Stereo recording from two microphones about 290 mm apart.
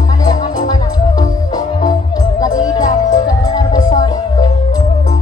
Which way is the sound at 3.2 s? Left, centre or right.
Centre.